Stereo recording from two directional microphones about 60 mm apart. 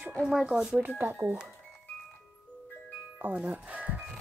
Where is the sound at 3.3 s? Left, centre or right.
Right.